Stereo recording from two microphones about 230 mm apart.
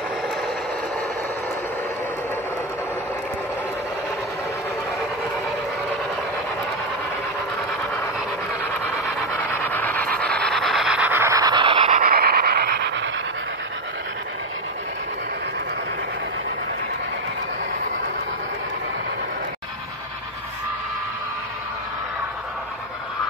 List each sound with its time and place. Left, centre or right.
9.2 s train: centre
10.1 s rub: centre; by 12.0 s right
12.0 s dog: right